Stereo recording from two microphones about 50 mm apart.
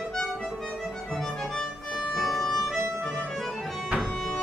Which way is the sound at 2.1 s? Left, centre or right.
Centre.